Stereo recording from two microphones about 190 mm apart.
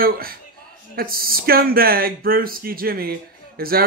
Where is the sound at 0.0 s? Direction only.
50° right (ahead or behind).